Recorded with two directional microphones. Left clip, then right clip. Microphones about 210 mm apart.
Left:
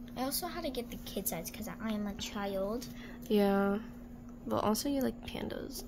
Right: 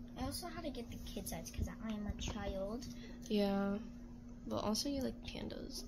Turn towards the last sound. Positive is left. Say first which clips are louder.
# left 7 dB
turn(degrees=25)  # may be behind; listen again after turning